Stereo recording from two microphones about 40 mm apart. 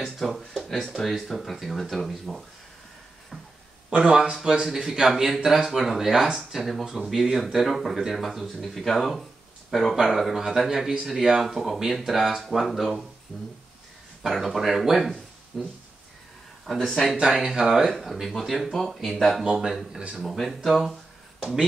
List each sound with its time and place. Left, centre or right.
0.0 s a sound: centre
0.5 s speech: centre
4.0 s speech: right
6.3 s speech: centre
17.3 s speech: centre
17.9 s speech: centre